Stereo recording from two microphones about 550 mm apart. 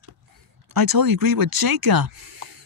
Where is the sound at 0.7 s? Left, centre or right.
Right.